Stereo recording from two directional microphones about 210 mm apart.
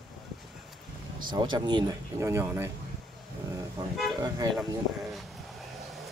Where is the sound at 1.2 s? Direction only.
20° right (ahead or behind).